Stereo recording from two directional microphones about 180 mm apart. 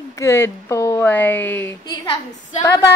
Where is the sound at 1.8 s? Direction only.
25° left (ahead or behind).